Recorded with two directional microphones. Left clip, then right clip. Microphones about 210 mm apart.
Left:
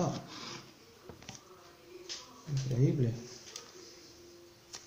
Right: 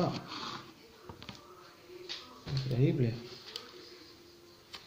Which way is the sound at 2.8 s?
40° left (ahead or behind).